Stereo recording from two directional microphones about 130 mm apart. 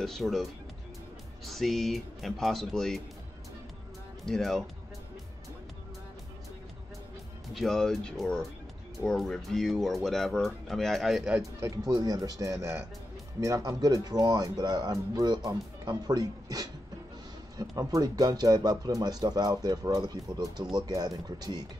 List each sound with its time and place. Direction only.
0.0 s speech: centre (ahead or behind)
4.3 s speech: 5° left (ahead or behind)
7.5 s speech: 5° left (ahead or behind)
11.6 s speech: 25° right (ahead or behind)